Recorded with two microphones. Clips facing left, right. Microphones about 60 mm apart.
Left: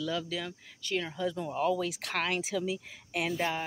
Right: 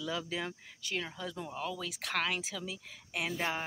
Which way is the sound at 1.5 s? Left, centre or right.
Centre.